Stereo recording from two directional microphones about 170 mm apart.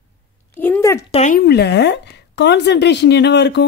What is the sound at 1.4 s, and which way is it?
A woman's voice, 70° left (ahead or behind).